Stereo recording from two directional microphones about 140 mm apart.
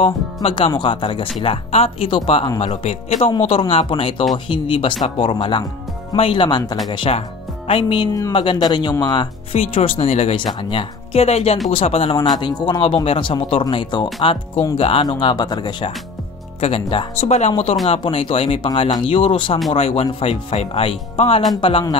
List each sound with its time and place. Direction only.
0.0 s speech: 40° left (ahead or behind)
2.6 s speech: 45° left (ahead or behind); by 9.3 s 30° left (ahead or behind)
9.5 s speech: 45° left (ahead or behind)
15.0 s speech: 30° left (ahead or behind)
16.6 s speech: 45° left (ahead or behind)
18.7 s speech: 30° left (ahead or behind)